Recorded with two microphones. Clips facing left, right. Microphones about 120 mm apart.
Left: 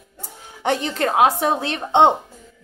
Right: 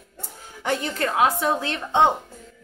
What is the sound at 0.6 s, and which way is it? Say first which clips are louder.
Speech: left 4 dB; 70° left (ahead or behind).